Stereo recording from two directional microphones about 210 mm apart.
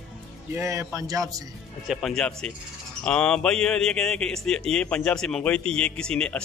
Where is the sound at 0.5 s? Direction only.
15° right (ahead or behind).